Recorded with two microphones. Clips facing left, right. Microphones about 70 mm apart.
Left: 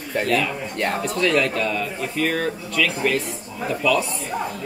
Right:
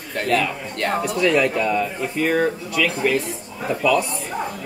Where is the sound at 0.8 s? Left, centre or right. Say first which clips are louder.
Right 3 dB; centre.